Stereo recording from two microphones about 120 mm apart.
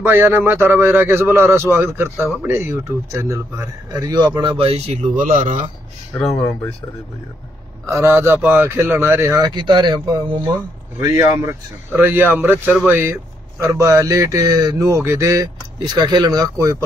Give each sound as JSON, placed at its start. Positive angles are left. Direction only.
{"t": 0.0, "sound": "speech", "side_deg": -20}
{"t": 6.2, "sound": "speech", "side_deg": 5}
{"t": 7.8, "sound": "speech", "side_deg": -25}
{"t": 9.6, "sound": "speech", "side_deg": -40}
{"t": 11.0, "sound": "speech", "side_deg": -25}